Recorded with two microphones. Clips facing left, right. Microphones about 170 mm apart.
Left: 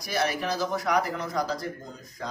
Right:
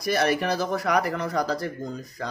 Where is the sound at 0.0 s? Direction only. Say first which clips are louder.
Right 5 dB; 60° right (ahead or behind).